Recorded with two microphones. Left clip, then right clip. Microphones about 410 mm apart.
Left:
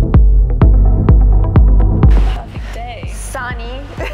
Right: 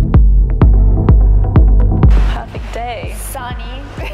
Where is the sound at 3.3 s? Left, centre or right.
Left.